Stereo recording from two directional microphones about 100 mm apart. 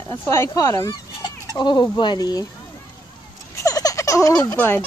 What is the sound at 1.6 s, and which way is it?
Fowl, 50° left (ahead or behind).